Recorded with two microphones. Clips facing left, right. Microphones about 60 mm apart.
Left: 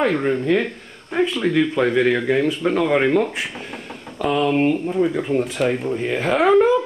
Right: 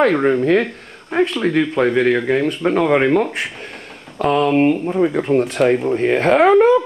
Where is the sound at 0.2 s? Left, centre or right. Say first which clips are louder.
Right 5 dB; centre.